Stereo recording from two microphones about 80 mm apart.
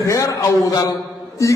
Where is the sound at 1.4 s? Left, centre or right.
Left.